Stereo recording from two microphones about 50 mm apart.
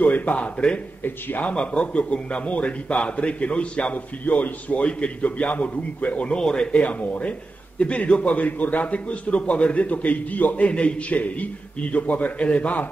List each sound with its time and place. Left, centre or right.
0.0 s speech: left
1.0 s a man's voice: left
1.5 s a man's voice: left